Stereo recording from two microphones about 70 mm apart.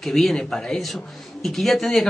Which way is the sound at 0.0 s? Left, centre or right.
Centre.